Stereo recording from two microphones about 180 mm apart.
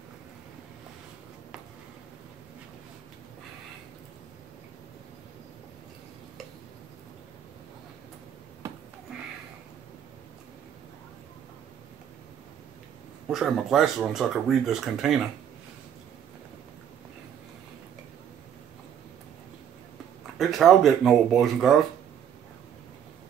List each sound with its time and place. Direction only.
13.3 s speech: centre (ahead or behind)
20.3 s speech: centre (ahead or behind)